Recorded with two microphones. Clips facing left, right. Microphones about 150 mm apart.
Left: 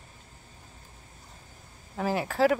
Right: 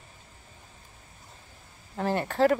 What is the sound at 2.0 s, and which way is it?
Speech, 5° left (ahead or behind).